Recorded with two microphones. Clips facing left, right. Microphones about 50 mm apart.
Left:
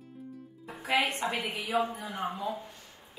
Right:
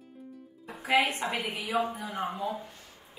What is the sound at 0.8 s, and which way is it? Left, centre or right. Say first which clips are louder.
A woman's voice: right 2 dB; centre.